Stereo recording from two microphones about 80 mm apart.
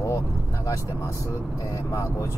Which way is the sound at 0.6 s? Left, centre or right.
Left.